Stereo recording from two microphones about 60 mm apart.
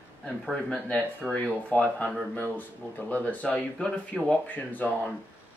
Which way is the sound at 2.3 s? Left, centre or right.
Left.